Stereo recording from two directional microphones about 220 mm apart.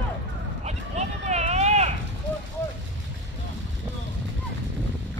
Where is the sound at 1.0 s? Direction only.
30° right (ahead or behind).